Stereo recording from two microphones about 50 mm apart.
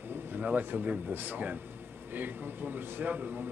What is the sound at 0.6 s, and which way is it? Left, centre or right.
Speech, right.